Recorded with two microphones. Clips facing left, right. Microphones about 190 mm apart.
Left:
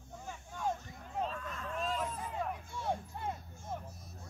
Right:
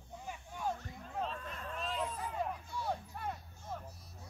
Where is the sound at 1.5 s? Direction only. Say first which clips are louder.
Left 4 dB; 45° left (ahead or behind).